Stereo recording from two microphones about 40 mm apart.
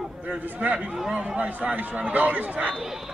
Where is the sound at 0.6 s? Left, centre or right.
Right.